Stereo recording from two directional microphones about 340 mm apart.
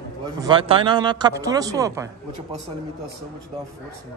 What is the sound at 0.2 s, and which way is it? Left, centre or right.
A man's voice, centre.